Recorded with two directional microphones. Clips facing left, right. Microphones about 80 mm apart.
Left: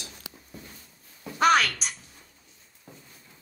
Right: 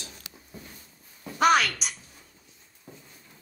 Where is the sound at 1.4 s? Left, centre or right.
Left.